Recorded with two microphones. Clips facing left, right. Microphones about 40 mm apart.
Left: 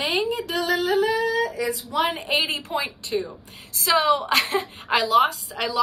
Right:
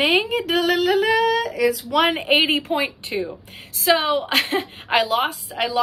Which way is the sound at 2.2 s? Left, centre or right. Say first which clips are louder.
Right 6 dB; right.